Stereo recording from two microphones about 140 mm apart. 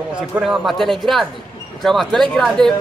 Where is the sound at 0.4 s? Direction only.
Centre (ahead or behind).